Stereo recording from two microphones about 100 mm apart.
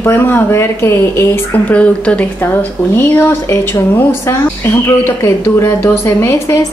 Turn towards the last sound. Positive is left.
turn(degrees=30)  # may be behind; listen again after turning